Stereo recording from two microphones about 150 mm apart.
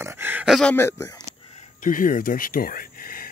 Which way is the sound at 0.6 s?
5° left (ahead or behind).